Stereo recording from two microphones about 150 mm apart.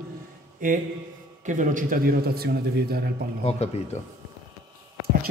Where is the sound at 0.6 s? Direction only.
65° right (ahead or behind); by 3.1 s 90° right.